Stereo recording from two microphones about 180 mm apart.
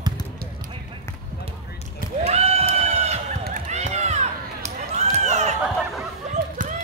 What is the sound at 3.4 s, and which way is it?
Run, 40° right (ahead or behind).